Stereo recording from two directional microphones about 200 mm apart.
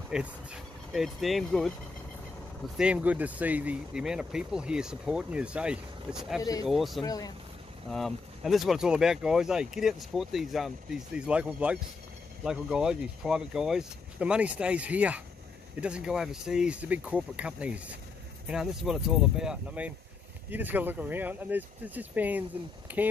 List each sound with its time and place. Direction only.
0.1 s speech: 5° right (ahead or behind)
2.8 s speech: 5° right (ahead or behind)
6.4 s speech: 20° left (ahead or behind)
6.7 s speech: centre (ahead or behind)
7.0 s speech: 20° left (ahead or behind)
7.9 s speech: centre (ahead or behind)